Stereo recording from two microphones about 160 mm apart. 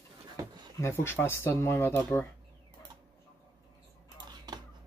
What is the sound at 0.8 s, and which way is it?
Speech, 15° left (ahead or behind).